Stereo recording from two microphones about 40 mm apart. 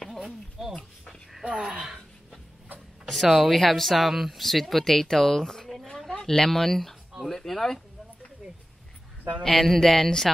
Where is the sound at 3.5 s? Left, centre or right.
Centre.